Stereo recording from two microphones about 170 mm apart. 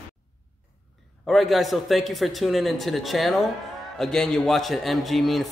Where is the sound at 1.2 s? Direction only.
Centre (ahead or behind).